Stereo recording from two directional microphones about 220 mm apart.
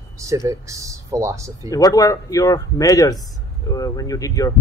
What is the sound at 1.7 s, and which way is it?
Speech, 15° left (ahead or behind).